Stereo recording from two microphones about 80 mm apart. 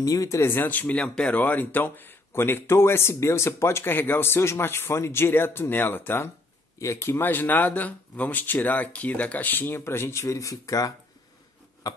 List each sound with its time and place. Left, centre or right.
0.0 s speech: left
0.4 s speech: left
0.9 s speech: centre
1.4 s speech: left